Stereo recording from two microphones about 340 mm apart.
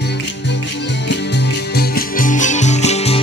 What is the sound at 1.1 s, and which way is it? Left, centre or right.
Music, left.